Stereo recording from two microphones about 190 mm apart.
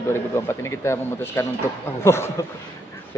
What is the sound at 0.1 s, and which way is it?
Speech, 15° left (ahead or behind).